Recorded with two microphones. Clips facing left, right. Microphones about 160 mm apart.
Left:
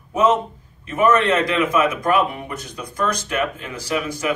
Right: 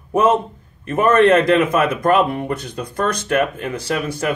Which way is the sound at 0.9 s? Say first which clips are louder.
Right 4 dB; 55° right (ahead or behind).